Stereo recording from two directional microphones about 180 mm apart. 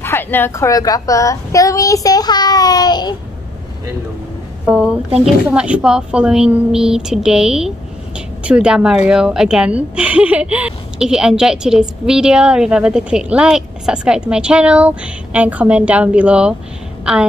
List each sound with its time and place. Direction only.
0.0 s a woman's voice: 10° left (ahead or behind)
4.6 s a woman's voice: 5° right (ahead or behind)